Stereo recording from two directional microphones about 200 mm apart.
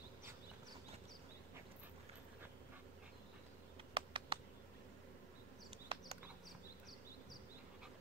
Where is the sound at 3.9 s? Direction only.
25° right (ahead or behind).